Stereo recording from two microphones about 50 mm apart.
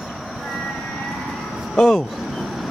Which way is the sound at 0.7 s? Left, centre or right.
Centre.